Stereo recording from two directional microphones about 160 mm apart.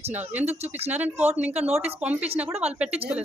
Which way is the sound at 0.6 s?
40° right (ahead or behind).